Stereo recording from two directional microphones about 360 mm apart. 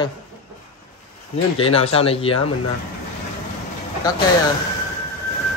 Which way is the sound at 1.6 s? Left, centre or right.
Centre.